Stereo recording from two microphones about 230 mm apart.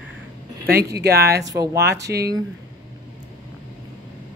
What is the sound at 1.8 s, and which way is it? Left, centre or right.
Speech, right.